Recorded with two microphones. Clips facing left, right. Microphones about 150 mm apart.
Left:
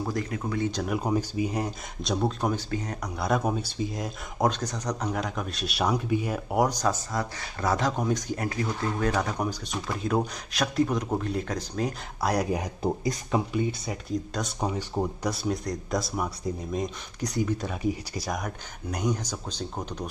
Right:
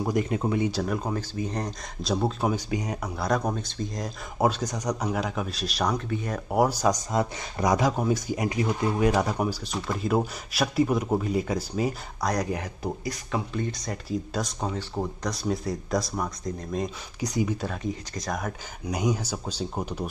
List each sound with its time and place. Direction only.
0.0 s speech: 20° right (ahead or behind)
0.8 s speech: 10° left (ahead or behind)
2.0 s speech: centre (ahead or behind)
3.2 s speech: 5° left (ahead or behind)
7.1 s speech: 20° right (ahead or behind)
12.2 s speech: 10° left (ahead or behind)
13.5 s speech: 10° left (ahead or behind)
14.0 s speech: 5° right (ahead or behind)
14.6 s speech: 15° left (ahead or behind)
15.3 s speech: centre (ahead or behind)
17.2 s speech: 10° right (ahead or behind)
17.6 s speech: 5° left (ahead or behind)
18.9 s speech: 10° right (ahead or behind)